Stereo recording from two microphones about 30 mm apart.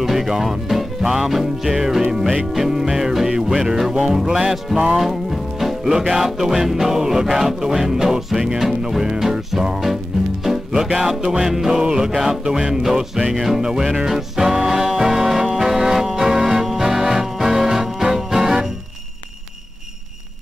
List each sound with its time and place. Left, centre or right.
0.0 s music: centre